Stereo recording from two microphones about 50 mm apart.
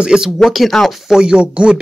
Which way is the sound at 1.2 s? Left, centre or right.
Right.